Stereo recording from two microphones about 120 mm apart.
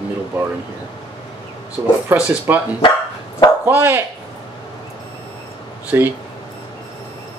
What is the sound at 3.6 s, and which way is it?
Speech, 15° right (ahead or behind).